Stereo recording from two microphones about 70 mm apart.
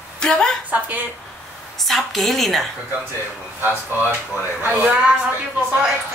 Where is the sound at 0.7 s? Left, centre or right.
Right.